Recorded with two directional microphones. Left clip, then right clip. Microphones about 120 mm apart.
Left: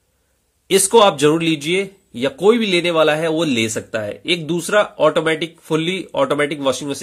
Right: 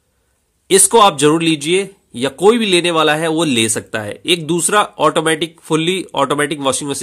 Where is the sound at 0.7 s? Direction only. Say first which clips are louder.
Right 2 dB; 35° right (ahead or behind).